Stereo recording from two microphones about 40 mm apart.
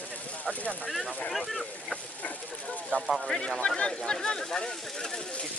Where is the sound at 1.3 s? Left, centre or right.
Centre.